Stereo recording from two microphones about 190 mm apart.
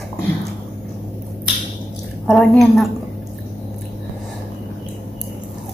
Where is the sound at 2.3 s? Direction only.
Centre (ahead or behind).